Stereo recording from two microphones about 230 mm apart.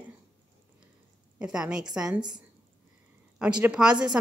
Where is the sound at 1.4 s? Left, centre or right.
Centre.